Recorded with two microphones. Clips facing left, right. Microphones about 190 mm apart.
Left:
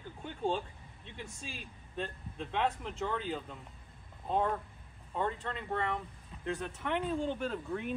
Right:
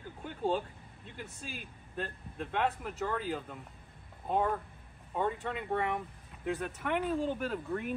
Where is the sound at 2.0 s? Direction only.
5° right (ahead or behind).